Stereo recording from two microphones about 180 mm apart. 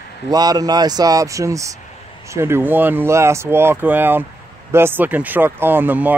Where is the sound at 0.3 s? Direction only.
20° right (ahead or behind).